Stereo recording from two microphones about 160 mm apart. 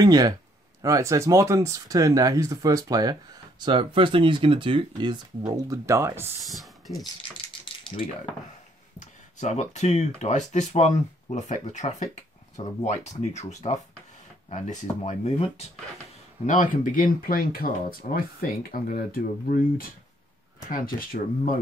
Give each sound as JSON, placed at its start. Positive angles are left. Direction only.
{"t": 0.0, "sound": "speech", "side_deg": -25}
{"t": 6.4, "sound": "speech", "side_deg": 0}
{"t": 9.0, "sound": "speech", "side_deg": 45}
{"t": 16.4, "sound": "speech", "side_deg": 55}
{"t": 20.7, "sound": "speech", "side_deg": 60}